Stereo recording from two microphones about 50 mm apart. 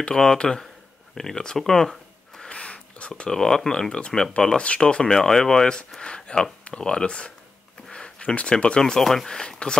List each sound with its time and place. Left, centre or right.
0.0 s speech: centre
1.1 s a sound: centre
2.5 s speech: left